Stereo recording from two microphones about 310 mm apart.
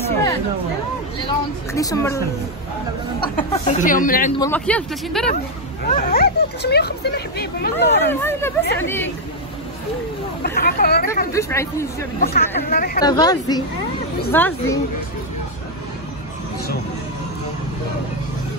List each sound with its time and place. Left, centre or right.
1.2 s a woman's voice: centre
4.4 s speech: centre
5.9 s speech: left
8.1 s a woman's voice: centre
10.4 s speech: left
11.3 s a woman's voice: centre
12.2 s speech: left
13.0 s a woman's voice: centre